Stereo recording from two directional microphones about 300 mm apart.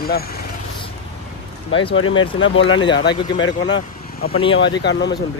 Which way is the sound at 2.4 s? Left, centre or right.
Left.